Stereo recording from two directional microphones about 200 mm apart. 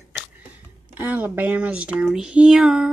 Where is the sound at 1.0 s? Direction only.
10° right (ahead or behind).